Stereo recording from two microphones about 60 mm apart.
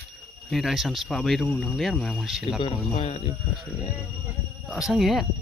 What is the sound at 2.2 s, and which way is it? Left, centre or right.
Speech, centre.